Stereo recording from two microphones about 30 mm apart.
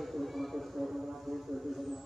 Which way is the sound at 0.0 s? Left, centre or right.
Centre.